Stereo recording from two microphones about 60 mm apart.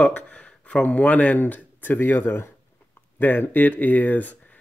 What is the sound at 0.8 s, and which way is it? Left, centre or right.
Speech, left.